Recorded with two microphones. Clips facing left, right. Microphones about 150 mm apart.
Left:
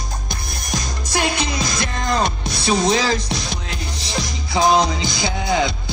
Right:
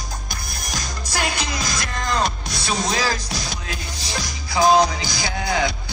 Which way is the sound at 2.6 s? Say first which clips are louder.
Left 5 dB; 25° left (ahead or behind).